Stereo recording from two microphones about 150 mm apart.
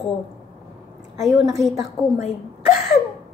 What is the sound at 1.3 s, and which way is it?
Speech, 20° right (ahead or behind).